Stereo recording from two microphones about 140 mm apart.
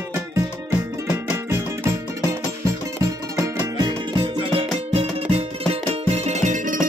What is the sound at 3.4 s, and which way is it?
Music, 30° right (ahead or behind).